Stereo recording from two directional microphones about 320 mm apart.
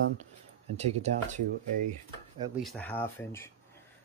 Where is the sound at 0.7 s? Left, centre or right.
Centre.